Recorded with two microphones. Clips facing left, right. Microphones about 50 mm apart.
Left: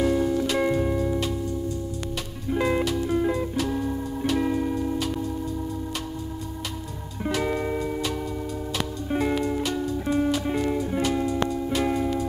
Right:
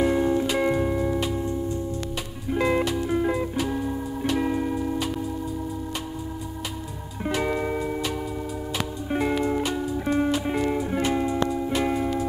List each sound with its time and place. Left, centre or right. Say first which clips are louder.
0.0 s music: right 1 dB; right
0.5 s music: even; centre
2.9 s music: even; centre
7.2 s music: even; centre
9.1 s music: right 1 dB; centre